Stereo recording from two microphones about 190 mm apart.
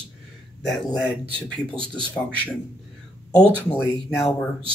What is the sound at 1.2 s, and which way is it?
Speech, 25° right (ahead or behind).